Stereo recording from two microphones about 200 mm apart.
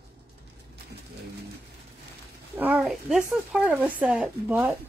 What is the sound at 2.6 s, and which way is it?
A woman's voice, 5° right (ahead or behind).